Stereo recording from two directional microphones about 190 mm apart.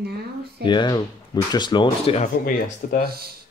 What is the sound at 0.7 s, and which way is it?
Speech, 25° left (ahead or behind).